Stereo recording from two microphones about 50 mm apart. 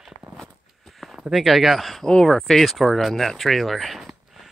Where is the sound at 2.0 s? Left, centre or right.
Centre.